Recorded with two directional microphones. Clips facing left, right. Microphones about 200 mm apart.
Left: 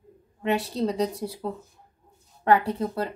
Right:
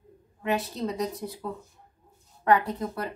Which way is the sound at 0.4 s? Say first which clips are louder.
Left 3 dB; 30° left (ahead or behind).